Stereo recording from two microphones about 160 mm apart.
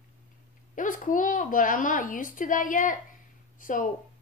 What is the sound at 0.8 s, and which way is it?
A woman's voice, 55° left (ahead or behind).